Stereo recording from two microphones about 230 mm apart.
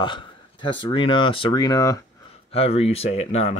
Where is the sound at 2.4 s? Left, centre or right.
Left.